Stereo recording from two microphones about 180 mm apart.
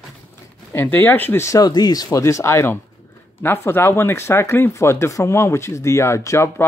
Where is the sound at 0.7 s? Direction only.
10° left (ahead or behind).